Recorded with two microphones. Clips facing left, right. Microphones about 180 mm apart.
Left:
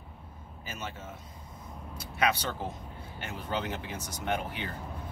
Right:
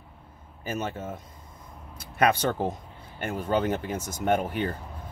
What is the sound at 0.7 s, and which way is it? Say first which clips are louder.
Speech: right 9 dB; 50° right (ahead or behind).